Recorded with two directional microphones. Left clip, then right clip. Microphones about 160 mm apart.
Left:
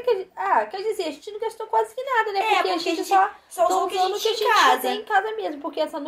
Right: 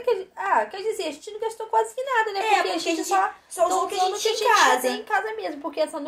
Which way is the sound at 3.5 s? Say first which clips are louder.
Left 2 dB; 20° right (ahead or behind).